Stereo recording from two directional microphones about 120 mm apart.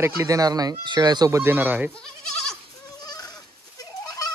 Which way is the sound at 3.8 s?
30° left (ahead or behind).